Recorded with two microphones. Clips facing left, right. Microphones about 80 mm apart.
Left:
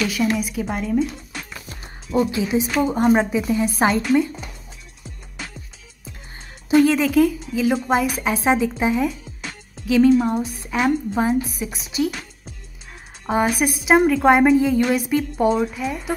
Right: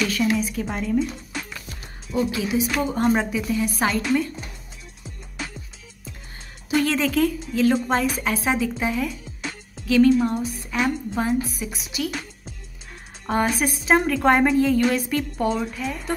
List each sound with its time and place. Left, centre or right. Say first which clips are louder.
0.0 s a woman's voice: left 1 dB; centre
1.7 s music: left 6 dB; left
2.7 s a woman's voice: left 5 dB; centre
6.7 s a woman's voice: left 6 dB; centre
13.3 s a woman's voice: left 3 dB; centre